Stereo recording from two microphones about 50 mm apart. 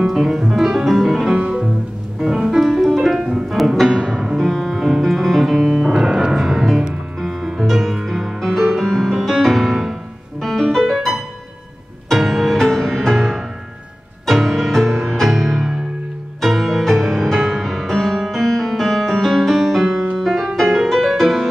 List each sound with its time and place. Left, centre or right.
0.0 s music: centre
1.4 s music: centre